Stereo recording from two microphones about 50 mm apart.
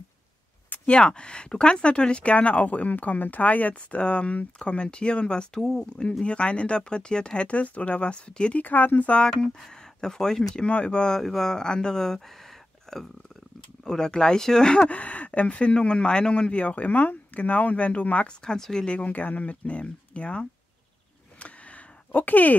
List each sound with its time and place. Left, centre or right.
0.8 s speech: centre
8.6 s speech: left
9.2 s speech: centre
18.4 s speech: centre
21.4 s a sound: left